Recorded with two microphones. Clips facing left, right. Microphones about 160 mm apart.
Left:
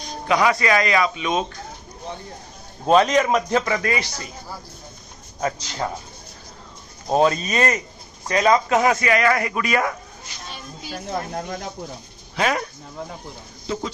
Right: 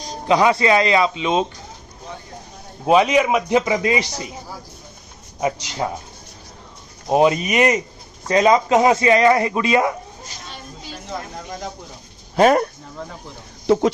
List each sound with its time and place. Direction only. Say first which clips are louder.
0.3 s speech: right 3 dB; 25° right (ahead or behind)
2.9 s a man's voice: right 1 dB; 10° right (ahead or behind)
7.1 s a man's voice: right 3 dB; 15° right (ahead or behind)
12.4 s speech: right 9 dB; 45° right (ahead or behind)